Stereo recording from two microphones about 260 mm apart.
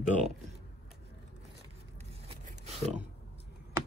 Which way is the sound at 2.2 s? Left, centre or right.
Right.